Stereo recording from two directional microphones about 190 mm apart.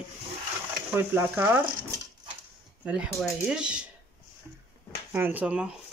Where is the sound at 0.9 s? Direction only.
10° right (ahead or behind).